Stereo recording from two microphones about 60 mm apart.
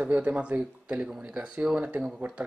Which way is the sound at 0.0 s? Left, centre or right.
Right.